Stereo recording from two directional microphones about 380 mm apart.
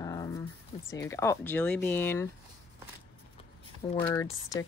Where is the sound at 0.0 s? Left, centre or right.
Centre.